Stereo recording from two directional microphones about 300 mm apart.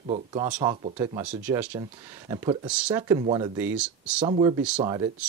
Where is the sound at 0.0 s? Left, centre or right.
Centre.